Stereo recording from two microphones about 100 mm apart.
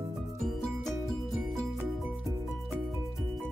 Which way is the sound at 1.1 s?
5° left (ahead or behind).